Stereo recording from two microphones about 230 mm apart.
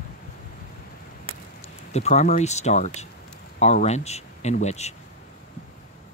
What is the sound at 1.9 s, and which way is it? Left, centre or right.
Speech, left.